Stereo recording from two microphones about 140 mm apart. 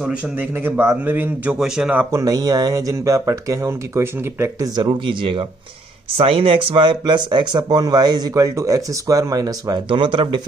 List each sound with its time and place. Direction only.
0.0 s a man's voice: 10° right (ahead or behind)
2.0 s speech: 20° right (ahead or behind)
4.7 s speech: 35° right (ahead or behind)